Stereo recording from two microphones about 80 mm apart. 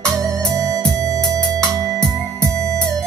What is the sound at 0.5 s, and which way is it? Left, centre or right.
Organ, right.